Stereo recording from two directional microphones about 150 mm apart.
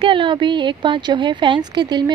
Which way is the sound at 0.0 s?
35° right (ahead or behind).